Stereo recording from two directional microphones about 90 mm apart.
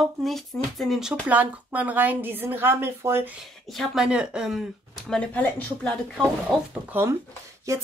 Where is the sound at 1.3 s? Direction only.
15° right (ahead or behind).